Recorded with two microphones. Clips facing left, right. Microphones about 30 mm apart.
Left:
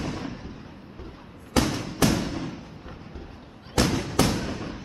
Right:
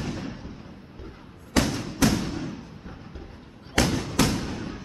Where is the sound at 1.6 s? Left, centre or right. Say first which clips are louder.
Even; centre.